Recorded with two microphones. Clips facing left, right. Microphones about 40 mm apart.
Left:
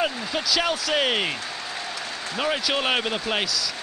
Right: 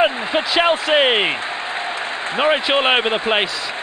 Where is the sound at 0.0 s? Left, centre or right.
Right.